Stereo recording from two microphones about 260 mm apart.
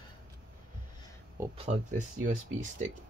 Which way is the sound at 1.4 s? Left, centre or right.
Centre.